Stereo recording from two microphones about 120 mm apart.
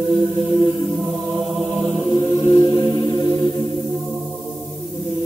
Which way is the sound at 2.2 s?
45° left (ahead or behind).